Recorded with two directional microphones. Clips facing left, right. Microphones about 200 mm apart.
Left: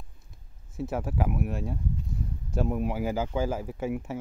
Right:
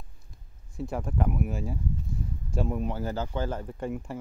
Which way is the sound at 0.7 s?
5° left (ahead or behind).